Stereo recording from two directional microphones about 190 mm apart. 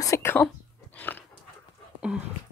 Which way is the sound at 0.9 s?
10° left (ahead or behind).